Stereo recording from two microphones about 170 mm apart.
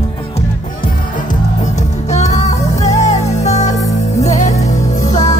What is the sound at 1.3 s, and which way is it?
Music, 45° left (ahead or behind).